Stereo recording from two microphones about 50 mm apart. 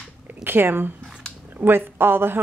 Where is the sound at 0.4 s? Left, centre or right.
Right.